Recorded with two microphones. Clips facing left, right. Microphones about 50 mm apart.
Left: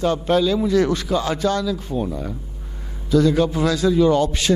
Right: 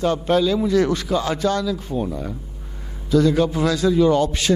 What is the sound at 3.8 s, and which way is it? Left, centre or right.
Speech, centre.